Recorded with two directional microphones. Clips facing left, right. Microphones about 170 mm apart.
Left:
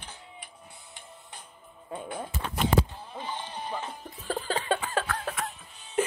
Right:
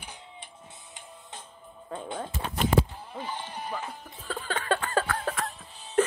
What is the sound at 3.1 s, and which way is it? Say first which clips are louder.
Music: even; 20° left (ahead or behind).